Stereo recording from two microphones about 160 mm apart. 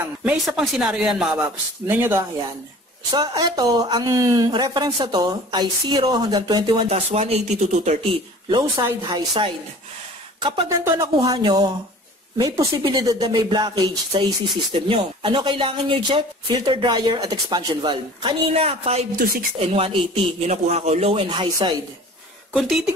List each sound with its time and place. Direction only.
0.2 s speech: 5° right (ahead or behind)
3.1 s speech: 25° right (ahead or behind); by 8.0 s 45° right (ahead or behind)
8.5 s speech: 25° right (ahead or behind)
10.7 s speech: 15° right (ahead or behind); by 19.0 s 40° right (ahead or behind)
19.1 s speech: 65° right (ahead or behind)
19.6 s speech: 35° right (ahead or behind)
22.5 s speech: centre (ahead or behind)